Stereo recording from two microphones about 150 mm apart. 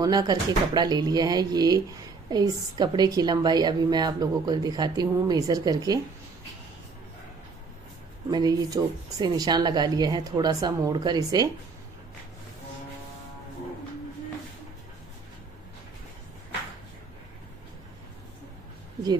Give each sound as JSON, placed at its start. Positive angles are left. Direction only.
{"t": 0.0, "sound": "a woman's voice", "side_deg": -25}
{"t": 8.3, "sound": "a woman's voice", "side_deg": -25}